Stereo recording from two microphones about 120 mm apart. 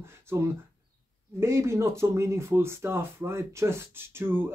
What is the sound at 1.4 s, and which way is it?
Speech, 20° right (ahead or behind).